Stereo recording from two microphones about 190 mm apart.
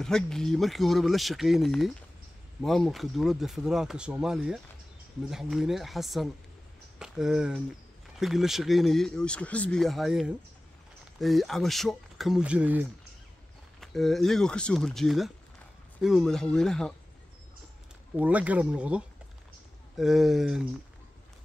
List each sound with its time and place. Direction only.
0.0 s speech: 5° left (ahead or behind)
18.1 s speech: 5° right (ahead or behind)